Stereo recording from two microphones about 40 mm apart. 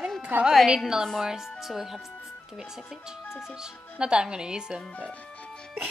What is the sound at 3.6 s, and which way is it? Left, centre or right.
Speech, right.